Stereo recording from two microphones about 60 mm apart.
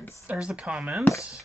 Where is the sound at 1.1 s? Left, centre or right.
Left.